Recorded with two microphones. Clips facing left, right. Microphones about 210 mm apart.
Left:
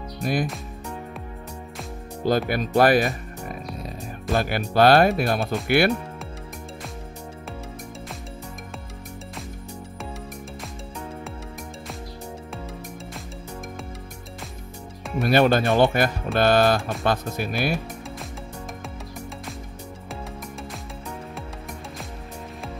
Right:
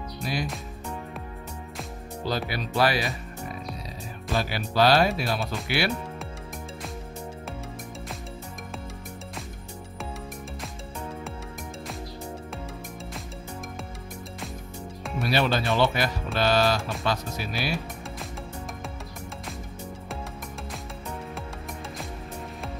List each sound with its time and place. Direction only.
0.2 s speech: 50° left (ahead or behind)
2.2 s speech: 50° left (ahead or behind)
15.2 s speech: 50° left (ahead or behind)